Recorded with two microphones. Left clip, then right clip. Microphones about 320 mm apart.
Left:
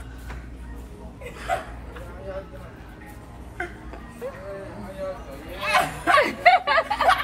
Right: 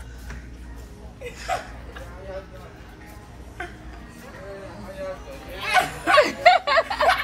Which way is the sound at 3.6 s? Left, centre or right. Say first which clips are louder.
Left 3 dB; centre.